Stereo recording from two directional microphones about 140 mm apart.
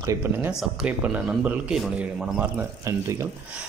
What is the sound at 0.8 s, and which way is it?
A man's voice, 10° right (ahead or behind).